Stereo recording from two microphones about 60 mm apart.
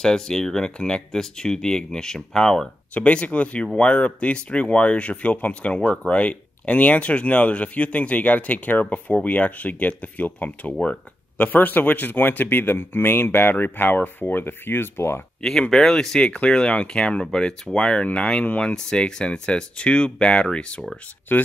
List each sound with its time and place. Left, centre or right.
0.0 s speech: centre; by 15.2 s left
15.7 s speech: centre
21.3 s speech: left